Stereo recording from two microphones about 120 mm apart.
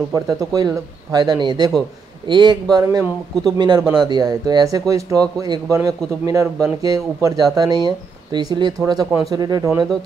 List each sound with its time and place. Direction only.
0.1 s speech: 30° right (ahead or behind)
2.7 s speech: 25° right (ahead or behind)